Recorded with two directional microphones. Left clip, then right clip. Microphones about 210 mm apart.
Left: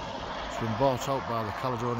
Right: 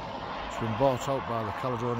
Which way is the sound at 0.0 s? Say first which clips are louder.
Even; 15° right (ahead or behind).